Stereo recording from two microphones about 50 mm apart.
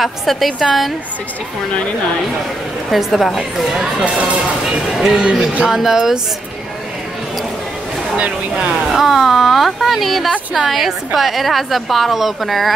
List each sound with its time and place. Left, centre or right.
0.0 s speech: centre
2.9 s speech: centre
5.2 s speech: right
5.7 s speech: centre
8.8 s speech: centre